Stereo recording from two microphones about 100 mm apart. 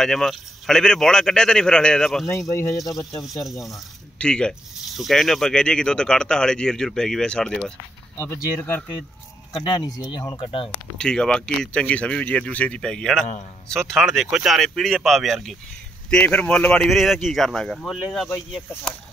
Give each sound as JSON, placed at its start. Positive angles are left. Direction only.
{"t": 0.0, "sound": "speech", "side_deg": 5}
{"t": 2.4, "sound": "speech", "side_deg": 30}
{"t": 3.3, "sound": "speech", "side_deg": 0}
{"t": 8.2, "sound": "speech", "side_deg": 20}
{"t": 9.6, "sound": "speech", "side_deg": 40}
{"t": 10.3, "sound": "speech", "side_deg": 60}
{"t": 11.0, "sound": "speech", "side_deg": 10}
{"t": 16.1, "sound": "speech", "side_deg": 15}